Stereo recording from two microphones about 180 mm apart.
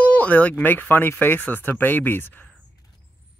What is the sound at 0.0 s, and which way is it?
Speech, 10° left (ahead or behind).